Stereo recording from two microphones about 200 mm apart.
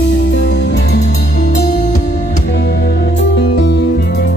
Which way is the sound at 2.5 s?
60° left (ahead or behind).